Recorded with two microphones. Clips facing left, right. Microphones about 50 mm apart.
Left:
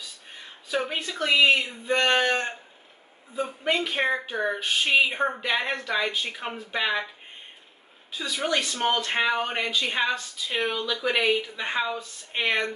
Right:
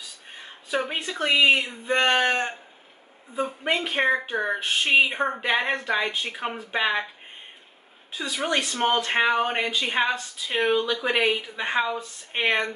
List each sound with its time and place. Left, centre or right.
0.4 s a woman's voice: centre
8.2 s speech: right